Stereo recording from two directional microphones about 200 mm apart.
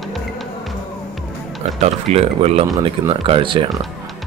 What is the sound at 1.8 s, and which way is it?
Speech, 30° right (ahead or behind).